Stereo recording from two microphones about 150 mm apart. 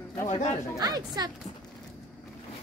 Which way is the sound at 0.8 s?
25° right (ahead or behind).